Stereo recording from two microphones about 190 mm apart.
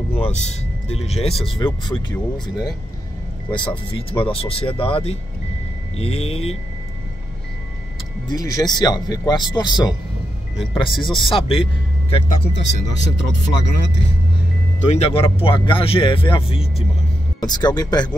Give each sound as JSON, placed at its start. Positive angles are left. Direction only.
{"t": 0.1, "sound": "speech", "side_deg": 35}
{"t": 1.3, "sound": "speech", "side_deg": 0}
{"t": 1.6, "sound": "a man's voice", "side_deg": 25}
{"t": 8.3, "sound": "a man's voice", "side_deg": 20}
{"t": 12.5, "sound": "speech", "side_deg": 65}
{"t": 14.9, "sound": "a man's voice", "side_deg": 30}